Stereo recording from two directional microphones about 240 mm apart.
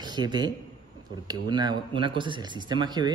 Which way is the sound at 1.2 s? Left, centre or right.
Centre.